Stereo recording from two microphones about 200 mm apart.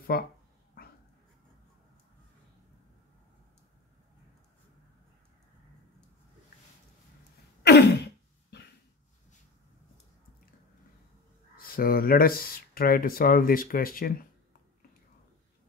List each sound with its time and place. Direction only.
0.1 s speech: 50° left (ahead or behind)
7.6 s throat clearing: 55° left (ahead or behind)
11.5 s speech: 45° left (ahead or behind)